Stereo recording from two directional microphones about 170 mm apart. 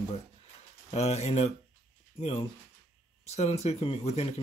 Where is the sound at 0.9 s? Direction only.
40° left (ahead or behind).